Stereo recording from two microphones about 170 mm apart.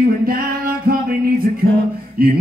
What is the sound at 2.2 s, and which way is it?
Music, 60° right (ahead or behind).